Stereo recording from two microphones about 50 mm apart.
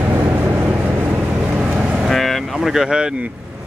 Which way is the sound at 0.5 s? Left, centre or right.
Right.